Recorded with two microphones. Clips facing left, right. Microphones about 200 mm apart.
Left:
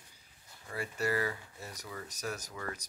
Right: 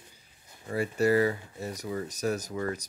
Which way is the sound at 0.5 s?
25° right (ahead or behind).